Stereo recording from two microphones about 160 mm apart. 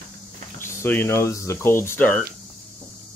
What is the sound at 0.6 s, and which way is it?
Speech, 15° left (ahead or behind).